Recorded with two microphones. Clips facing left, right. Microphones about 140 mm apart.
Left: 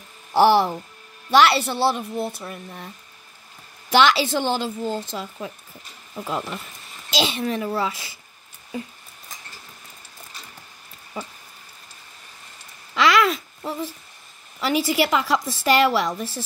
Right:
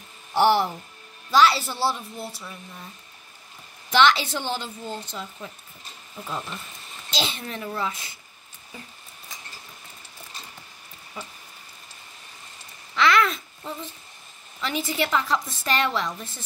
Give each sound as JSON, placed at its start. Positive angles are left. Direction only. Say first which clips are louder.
{"t": 0.3, "sound": "speech", "louder": "left 4 dB", "side_deg": 90}
{"t": 1.3, "sound": "a woman's voice", "louder": "left 3 dB", "side_deg": 75}
{"t": 3.9, "sound": "a woman's voice", "louder": "left 2 dB", "side_deg": 90}
{"t": 7.1, "sound": "a woman's voice", "louder": "left 7 dB", "side_deg": 90}
{"t": 12.9, "sound": "a sound", "louder": "left 2 dB", "side_deg": 90}
{"t": 14.6, "sound": "a woman's voice", "louder": "left 6 dB", "side_deg": 90}